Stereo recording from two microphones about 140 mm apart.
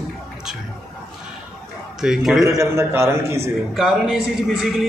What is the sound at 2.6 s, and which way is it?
Speech, 20° right (ahead or behind).